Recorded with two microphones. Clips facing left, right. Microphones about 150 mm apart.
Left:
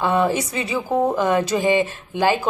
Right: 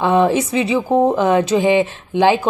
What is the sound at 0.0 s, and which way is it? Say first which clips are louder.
Speech: right 5 dB; 20° right (ahead or behind).